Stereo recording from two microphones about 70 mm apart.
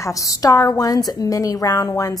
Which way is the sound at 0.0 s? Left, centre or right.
Left.